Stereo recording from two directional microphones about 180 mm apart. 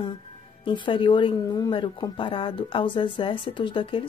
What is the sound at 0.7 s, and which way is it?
A woman's voice, 30° left (ahead or behind).